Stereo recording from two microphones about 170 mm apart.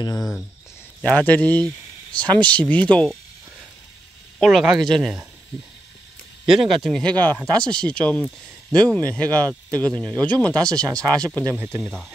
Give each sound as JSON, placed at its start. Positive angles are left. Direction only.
{"t": 0.0, "sound": "speech", "side_deg": 20}
{"t": 1.0, "sound": "speech", "side_deg": 10}
{"t": 4.4, "sound": "speech", "side_deg": 0}
{"t": 6.4, "sound": "speech", "side_deg": -5}
{"t": 11.5, "sound": "speech", "side_deg": -10}